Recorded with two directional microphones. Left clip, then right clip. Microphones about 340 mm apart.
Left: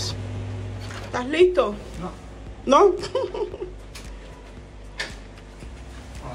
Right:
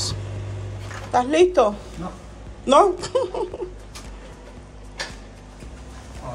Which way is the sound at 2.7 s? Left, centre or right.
Centre.